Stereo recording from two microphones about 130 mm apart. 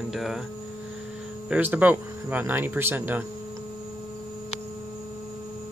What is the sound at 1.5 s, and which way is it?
Speech, 15° right (ahead or behind).